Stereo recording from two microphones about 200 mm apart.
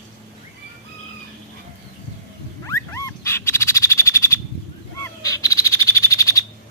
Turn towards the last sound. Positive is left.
turn(degrees=15)  # may be behind; listen again after turning